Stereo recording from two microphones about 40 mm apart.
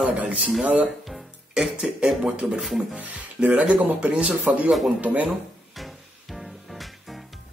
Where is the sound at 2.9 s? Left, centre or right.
Right.